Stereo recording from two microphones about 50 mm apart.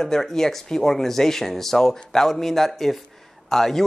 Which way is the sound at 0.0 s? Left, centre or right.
Centre.